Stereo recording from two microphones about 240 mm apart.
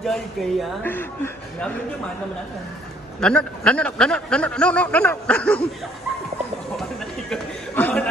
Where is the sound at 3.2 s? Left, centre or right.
Centre.